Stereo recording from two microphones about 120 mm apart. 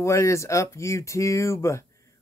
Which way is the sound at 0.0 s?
25° left (ahead or behind).